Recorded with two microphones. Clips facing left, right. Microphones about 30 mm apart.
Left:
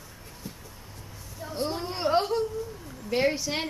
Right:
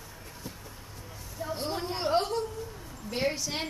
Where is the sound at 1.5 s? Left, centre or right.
Centre.